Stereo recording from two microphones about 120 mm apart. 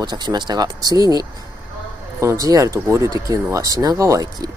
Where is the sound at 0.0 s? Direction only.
35° right (ahead or behind).